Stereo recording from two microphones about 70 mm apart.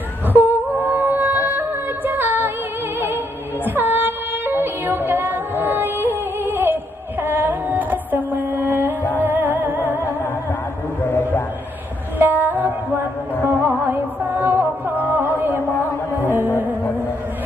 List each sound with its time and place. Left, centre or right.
0.3 s humming: right
0.8 s music: right
3.6 s music: right
11.1 s a sound: left
12.2 s music: right